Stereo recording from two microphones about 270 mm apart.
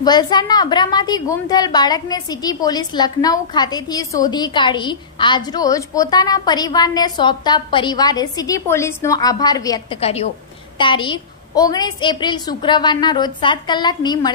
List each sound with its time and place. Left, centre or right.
0.0 s a woman's voice: centre